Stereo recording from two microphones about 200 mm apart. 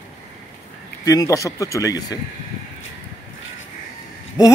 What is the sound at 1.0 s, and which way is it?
Speech, 15° left (ahead or behind).